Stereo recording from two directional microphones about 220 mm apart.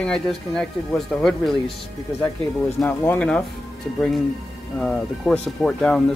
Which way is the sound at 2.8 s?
10° left (ahead or behind).